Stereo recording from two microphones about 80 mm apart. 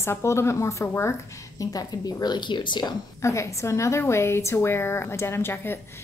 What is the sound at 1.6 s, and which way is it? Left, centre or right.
A woman's voice, left.